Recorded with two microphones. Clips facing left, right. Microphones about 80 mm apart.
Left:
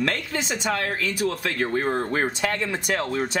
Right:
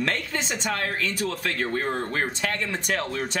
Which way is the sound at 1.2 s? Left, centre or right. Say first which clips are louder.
Left 3 dB; centre.